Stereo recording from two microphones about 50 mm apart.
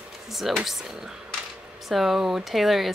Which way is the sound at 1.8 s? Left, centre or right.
Centre.